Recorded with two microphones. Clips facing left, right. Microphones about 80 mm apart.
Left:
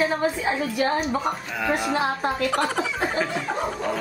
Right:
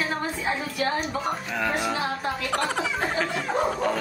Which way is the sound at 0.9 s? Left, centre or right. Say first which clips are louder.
Left 3 dB; centre.